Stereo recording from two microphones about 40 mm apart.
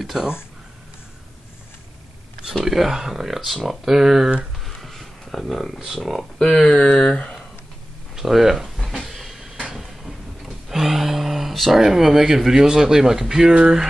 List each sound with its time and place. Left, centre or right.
0.1 s speech: centre
2.6 s speech: centre
4.6 s a sound: centre
5.9 s speech: centre
6.4 s speech: centre
6.7 s speech: left
8.2 s speech: centre
9.0 s vehicle: centre
9.8 s a sound: centre
11.8 s speech: centre